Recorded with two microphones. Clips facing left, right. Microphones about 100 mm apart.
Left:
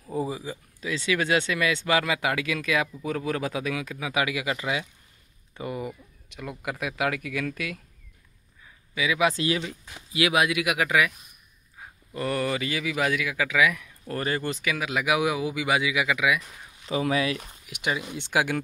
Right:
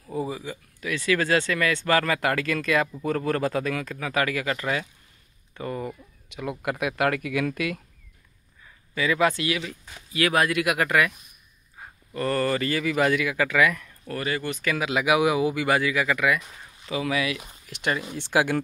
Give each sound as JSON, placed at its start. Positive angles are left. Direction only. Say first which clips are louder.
{"t": 0.0, "sound": "speech", "louder": "even", "side_deg": 25}
{"t": 6.2, "sound": "speech", "louder": "right 5 dB", "side_deg": -5}
{"t": 8.9, "sound": "speech", "louder": "right 2 dB", "side_deg": 5}
{"t": 9.3, "sound": "speech", "louder": "left 1 dB", "side_deg": 30}
{"t": 11.8, "sound": "a sound", "louder": "right 1 dB", "side_deg": 0}
{"t": 12.1, "sound": "speech", "louder": "right 3 dB", "side_deg": 10}
{"t": 14.0, "sound": "speech", "louder": "even", "side_deg": 30}
{"t": 14.6, "sound": "speech", "louder": "right 3 dB", "side_deg": 5}
{"t": 16.9, "sound": "speech", "louder": "left 1 dB", "side_deg": 35}
{"t": 17.6, "sound": "speech", "louder": "right 2 dB", "side_deg": 10}